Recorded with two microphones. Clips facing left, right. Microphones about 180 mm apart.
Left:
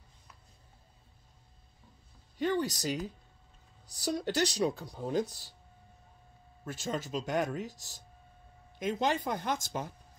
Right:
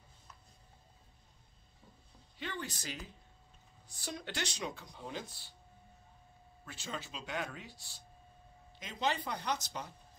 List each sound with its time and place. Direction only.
2.3 s speech: 40° left (ahead or behind)
6.6 s speech: 45° left (ahead or behind)